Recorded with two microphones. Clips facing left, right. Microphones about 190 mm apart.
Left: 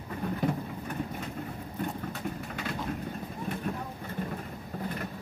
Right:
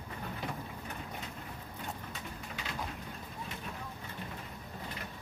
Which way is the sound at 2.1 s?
55° left (ahead or behind).